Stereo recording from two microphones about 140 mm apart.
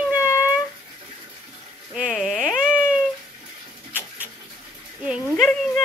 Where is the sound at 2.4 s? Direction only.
15° left (ahead or behind).